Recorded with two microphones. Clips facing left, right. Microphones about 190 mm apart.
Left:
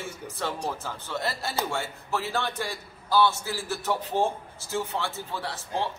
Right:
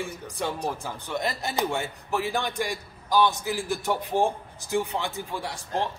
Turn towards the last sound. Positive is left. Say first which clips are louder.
# right 1 dB
turn(degrees=-15)  # may be behind; listen again after turning